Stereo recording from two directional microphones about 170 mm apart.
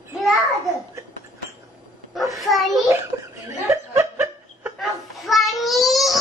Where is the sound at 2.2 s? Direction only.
Centre (ahead or behind).